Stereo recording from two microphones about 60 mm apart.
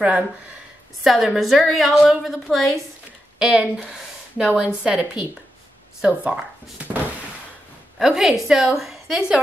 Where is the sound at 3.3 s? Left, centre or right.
Centre.